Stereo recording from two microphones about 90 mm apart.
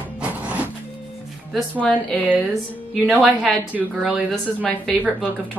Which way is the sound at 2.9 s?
Centre (ahead or behind).